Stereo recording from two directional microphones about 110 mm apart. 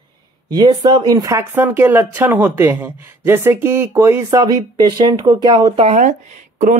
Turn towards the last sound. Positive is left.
turn(degrees=-90)